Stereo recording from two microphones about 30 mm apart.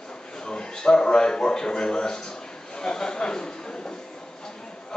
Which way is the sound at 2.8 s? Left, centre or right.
Left.